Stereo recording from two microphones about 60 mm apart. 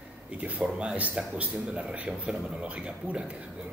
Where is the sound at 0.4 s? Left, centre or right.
Right.